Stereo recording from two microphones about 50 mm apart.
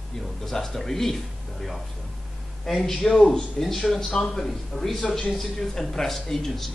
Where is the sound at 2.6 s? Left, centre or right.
Centre.